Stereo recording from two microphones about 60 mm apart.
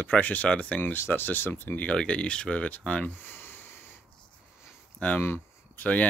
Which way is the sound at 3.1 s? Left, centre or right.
Left.